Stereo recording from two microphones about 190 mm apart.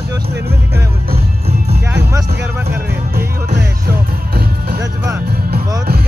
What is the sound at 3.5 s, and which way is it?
Music, 55° right (ahead or behind).